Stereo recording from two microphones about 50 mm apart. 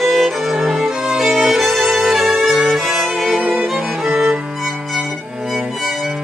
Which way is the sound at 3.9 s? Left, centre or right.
Centre.